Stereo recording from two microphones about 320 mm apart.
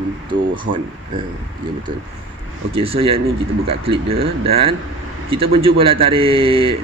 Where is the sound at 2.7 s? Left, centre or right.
Centre.